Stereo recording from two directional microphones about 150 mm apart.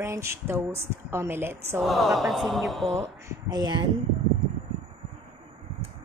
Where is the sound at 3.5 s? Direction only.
30° right (ahead or behind).